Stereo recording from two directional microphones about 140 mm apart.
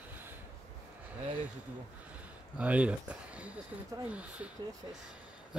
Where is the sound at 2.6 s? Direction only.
10° right (ahead or behind).